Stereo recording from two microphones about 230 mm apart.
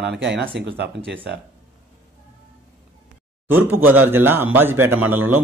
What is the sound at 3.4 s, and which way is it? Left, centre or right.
A man's voice, centre.